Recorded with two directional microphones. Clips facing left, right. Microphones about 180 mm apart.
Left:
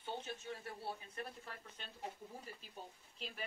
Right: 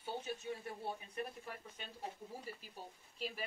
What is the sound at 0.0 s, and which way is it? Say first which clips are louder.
A man's voice: right 3 dB; 10° right (ahead or behind).